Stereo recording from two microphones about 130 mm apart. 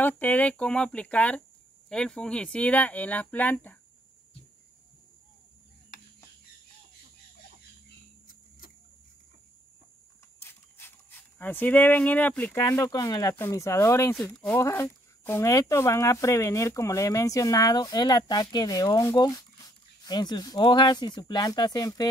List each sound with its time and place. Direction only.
0.0 s speech: 15° left (ahead or behind)
10.4 s a sound: 20° left (ahead or behind)
12.6 s speech: 25° left (ahead or behind)